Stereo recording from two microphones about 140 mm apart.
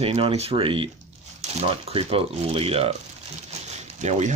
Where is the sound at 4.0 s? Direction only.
55° right (ahead or behind).